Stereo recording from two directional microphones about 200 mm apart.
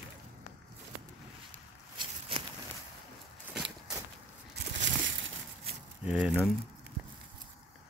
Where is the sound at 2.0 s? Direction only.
25° right (ahead or behind).